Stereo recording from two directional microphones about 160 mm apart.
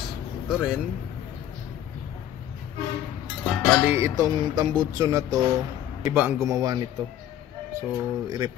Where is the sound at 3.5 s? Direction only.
5° left (ahead or behind).